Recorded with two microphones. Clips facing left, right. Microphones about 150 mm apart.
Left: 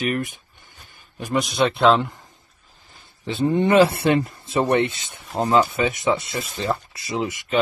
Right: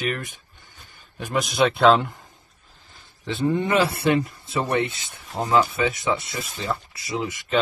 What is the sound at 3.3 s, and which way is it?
Speech, 20° left (ahead or behind).